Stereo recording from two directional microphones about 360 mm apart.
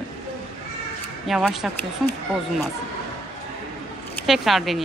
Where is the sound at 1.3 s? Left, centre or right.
Centre.